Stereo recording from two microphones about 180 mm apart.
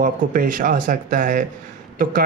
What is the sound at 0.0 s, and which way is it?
Speech, 50° right (ahead or behind).